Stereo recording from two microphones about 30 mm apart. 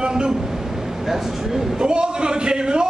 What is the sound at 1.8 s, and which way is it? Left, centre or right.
A man's voice, right.